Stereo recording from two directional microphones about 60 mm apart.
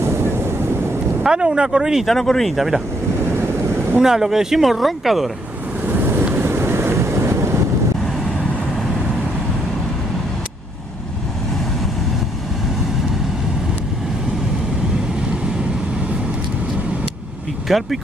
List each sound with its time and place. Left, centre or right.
0.0 s wind noise: right
1.2 s speech: centre
2.0 s speech: centre
4.0 s speech: centre
5.9 s waves: right
17.6 s speech: centre